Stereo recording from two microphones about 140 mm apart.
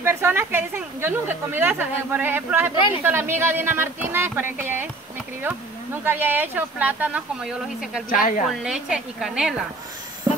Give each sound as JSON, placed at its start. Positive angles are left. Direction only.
{"t": 0.0, "sound": "a woman's voice", "side_deg": -15}
{"t": 6.0, "sound": "a woman's voice", "side_deg": -15}
{"t": 8.1, "sound": "a woman's voice", "side_deg": 80}
{"t": 8.5, "sound": "a woman's voice", "side_deg": -5}
{"t": 10.3, "sound": "train", "side_deg": -10}